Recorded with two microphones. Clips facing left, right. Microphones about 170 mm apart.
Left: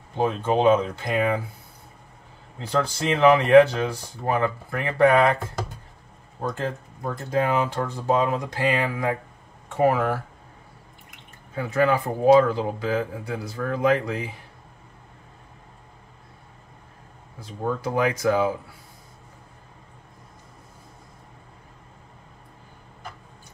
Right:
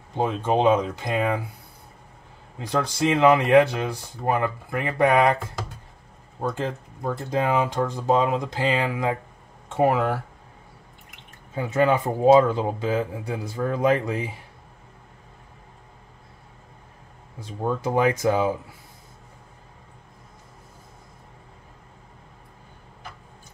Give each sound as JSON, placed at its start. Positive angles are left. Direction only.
{"t": 0.1, "sound": "speech", "side_deg": -15}
{"t": 2.6, "sound": "speech", "side_deg": -15}
{"t": 6.5, "sound": "speech", "side_deg": -20}
{"t": 11.5, "sound": "speech", "side_deg": -20}
{"t": 17.4, "sound": "speech", "side_deg": -20}